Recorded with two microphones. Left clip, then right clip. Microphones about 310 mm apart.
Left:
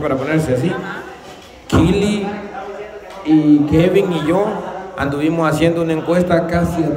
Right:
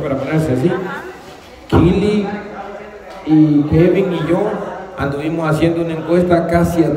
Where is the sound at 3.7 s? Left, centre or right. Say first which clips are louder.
Even; centre.